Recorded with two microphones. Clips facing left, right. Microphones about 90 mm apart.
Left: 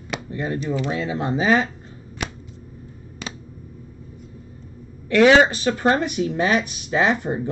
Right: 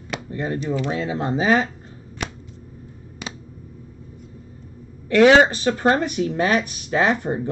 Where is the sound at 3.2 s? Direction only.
10° right (ahead or behind).